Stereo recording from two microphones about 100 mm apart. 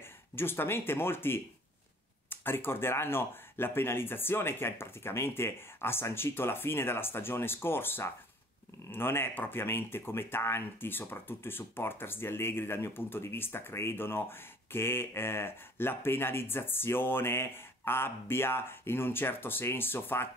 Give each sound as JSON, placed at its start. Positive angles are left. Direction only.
{"t": 0.0, "sound": "speech", "side_deg": 25}